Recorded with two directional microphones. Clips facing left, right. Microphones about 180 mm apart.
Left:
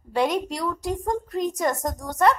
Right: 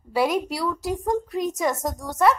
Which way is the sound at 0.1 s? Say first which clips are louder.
Right 1 dB; 5° right (ahead or behind).